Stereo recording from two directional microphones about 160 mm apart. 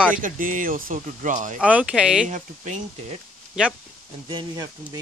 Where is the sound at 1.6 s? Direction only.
5° right (ahead or behind).